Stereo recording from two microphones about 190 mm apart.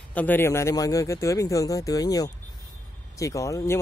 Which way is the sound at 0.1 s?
10° left (ahead or behind).